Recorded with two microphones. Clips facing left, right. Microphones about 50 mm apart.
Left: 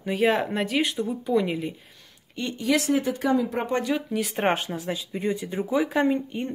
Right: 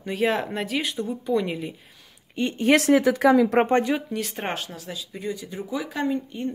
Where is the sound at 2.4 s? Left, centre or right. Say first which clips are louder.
Right 5 dB; right.